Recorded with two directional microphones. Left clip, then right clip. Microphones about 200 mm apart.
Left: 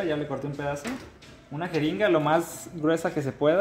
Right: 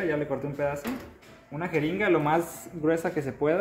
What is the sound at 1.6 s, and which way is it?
Speech, 30° left (ahead or behind).